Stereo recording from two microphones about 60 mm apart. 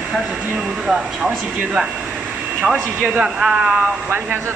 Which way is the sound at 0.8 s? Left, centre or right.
Centre.